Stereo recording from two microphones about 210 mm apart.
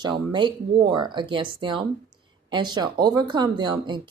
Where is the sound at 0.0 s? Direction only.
20° right (ahead or behind).